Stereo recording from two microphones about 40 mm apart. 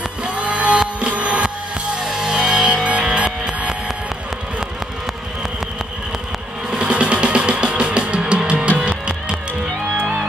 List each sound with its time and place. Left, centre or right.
0.2 s music: right
2.0 s music: centre
6.7 s music: right